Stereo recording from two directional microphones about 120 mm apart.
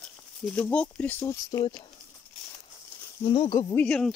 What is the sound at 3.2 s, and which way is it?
Speech, 45° left (ahead or behind).